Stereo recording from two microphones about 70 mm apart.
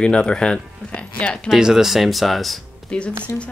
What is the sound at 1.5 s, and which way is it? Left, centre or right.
Speech, centre.